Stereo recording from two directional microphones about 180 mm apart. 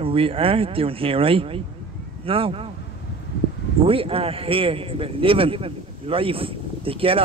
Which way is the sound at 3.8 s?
30° right (ahead or behind).